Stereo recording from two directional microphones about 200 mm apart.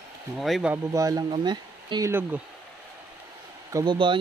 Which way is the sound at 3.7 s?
25° right (ahead or behind).